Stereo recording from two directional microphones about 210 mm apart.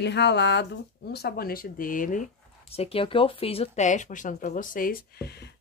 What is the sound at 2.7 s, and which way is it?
Speech, 30° left (ahead or behind).